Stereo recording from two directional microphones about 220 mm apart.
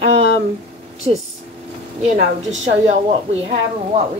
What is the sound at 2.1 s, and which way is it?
Speech, 30° right (ahead or behind).